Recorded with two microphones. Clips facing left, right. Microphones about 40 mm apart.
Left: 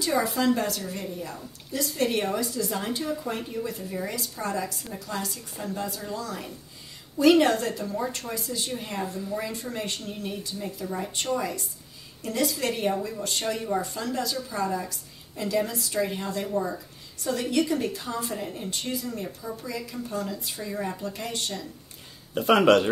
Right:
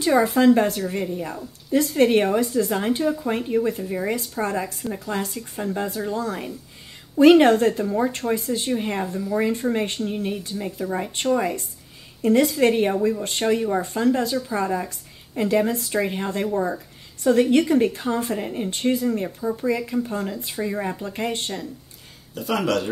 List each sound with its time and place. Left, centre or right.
0.0 s a woman's voice: right
22.3 s speech: left